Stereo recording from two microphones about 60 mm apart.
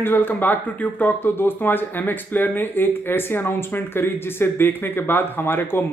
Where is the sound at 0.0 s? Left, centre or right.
Left.